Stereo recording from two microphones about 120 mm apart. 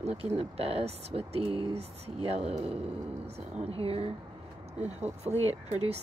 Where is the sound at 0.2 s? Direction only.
55° right (ahead or behind).